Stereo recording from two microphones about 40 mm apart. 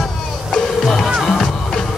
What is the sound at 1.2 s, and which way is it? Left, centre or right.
Music, centre.